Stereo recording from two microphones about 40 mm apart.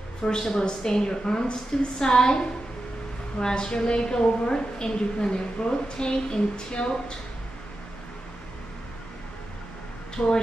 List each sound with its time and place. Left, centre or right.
0.2 s a woman's voice: centre
10.1 s speech: left